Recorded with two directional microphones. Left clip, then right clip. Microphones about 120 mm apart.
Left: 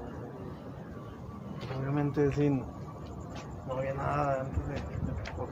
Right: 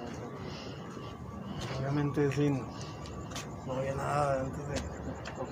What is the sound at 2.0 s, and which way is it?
Speech, 5° right (ahead or behind).